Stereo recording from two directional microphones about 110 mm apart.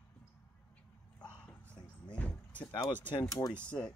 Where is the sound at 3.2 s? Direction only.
35° left (ahead or behind).